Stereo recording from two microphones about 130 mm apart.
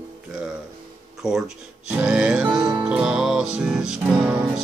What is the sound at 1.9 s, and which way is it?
Music, 5° right (ahead or behind).